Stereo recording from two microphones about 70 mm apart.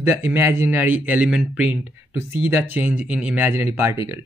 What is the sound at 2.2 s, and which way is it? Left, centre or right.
Speech, right.